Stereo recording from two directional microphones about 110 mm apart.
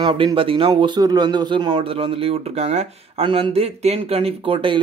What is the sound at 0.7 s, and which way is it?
Speech, 40° right (ahead or behind).